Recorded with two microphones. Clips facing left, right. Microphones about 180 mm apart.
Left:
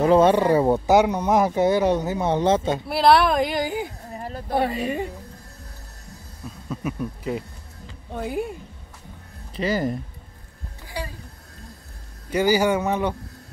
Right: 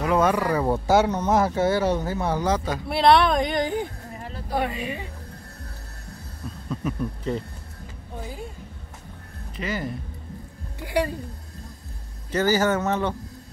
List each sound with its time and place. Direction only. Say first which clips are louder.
0.0 s speech: left 5 dB; 30° left (ahead or behind)
2.9 s speech: even; 5° left (ahead or behind)
4.5 s speech: left 4 dB; 35° left (ahead or behind)
6.7 s speech: even; 10° left (ahead or behind)
8.2 s speech: left 9 dB; 70° left (ahead or behind)
9.6 s speech: left 6 dB; 35° left (ahead or behind)
10.8 s a sound: right 9 dB; 65° right (ahead or behind)
12.3 s speech: left 2 dB; 10° left (ahead or behind)